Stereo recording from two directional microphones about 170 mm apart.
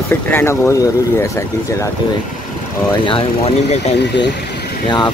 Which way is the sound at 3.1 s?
35° left (ahead or behind).